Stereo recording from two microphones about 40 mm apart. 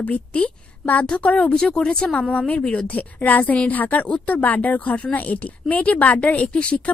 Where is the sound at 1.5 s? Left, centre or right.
Left.